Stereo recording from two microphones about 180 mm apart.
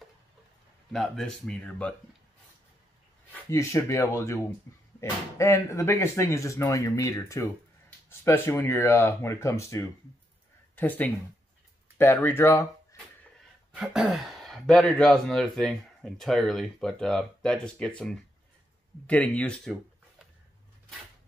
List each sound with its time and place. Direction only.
0.9 s speech: centre (ahead or behind)
3.4 s speech: 15° left (ahead or behind)
5.4 s speech: 15° left (ahead or behind)
13.7 s speech: centre (ahead or behind)